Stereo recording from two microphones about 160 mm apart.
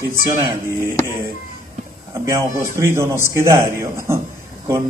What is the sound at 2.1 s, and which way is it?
A man's voice, 20° right (ahead or behind).